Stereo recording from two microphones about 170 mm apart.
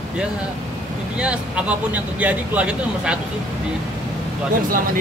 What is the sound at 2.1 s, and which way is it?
Speech, 10° right (ahead or behind).